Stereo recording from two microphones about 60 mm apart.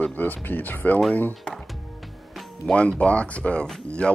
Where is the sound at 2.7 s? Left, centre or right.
Centre.